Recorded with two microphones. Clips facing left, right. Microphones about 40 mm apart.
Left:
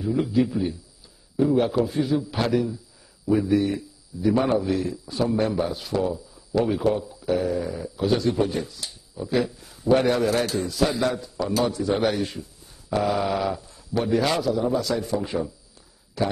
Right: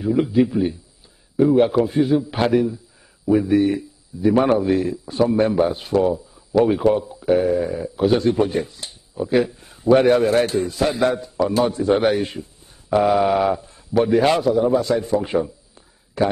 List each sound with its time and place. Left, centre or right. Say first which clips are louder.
0.0 s a man's voice: right 5 dB; right
5.6 s speech: right 7 dB; right
16.2 s speech: right 6 dB; right